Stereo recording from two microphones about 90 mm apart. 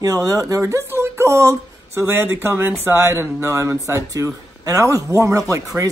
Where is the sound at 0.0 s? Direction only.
40° right (ahead or behind).